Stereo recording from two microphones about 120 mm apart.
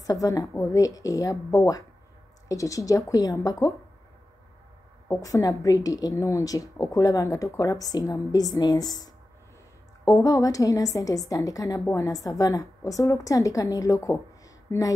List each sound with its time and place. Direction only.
0.0 s a woman's voice: 30° left (ahead or behind)
5.0 s a woman's voice: 25° left (ahead or behind)